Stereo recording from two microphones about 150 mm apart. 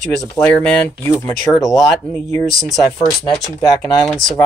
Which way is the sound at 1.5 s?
Centre (ahead or behind).